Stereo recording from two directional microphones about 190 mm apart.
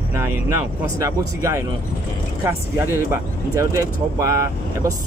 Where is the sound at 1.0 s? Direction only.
15° right (ahead or behind).